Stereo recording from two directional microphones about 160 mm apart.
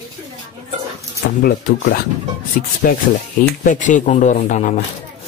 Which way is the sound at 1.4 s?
65° left (ahead or behind).